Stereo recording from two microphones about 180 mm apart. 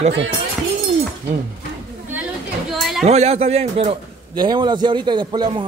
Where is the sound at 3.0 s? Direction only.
35° right (ahead or behind).